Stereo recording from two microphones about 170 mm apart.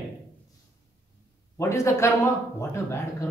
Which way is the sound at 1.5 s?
15° left (ahead or behind).